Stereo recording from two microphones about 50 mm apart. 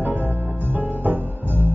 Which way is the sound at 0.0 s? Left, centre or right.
Right.